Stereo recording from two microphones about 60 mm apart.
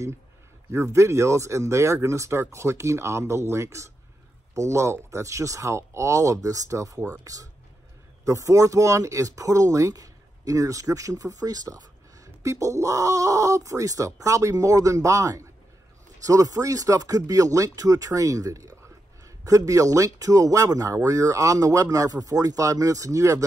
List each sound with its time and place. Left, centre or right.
0.7 s speech: right
8.3 s a man's voice: right
12.4 s a man's voice: right